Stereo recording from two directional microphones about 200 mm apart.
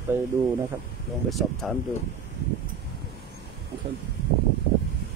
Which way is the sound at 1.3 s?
Centre (ahead or behind).